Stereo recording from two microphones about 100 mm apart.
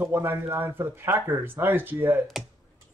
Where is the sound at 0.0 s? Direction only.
25° right (ahead or behind).